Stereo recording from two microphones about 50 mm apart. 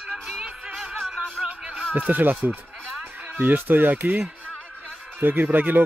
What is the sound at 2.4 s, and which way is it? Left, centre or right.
Speech, right.